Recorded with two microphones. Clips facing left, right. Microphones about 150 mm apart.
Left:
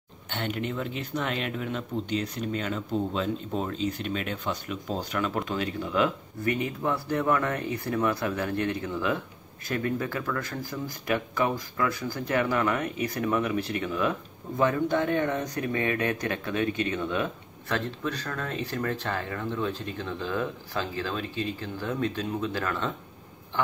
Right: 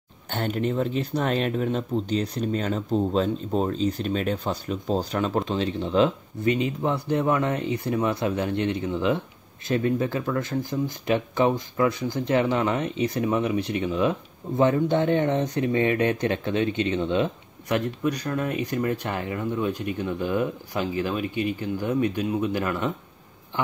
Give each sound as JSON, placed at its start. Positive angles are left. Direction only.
{"t": 0.3, "sound": "speech", "side_deg": -40}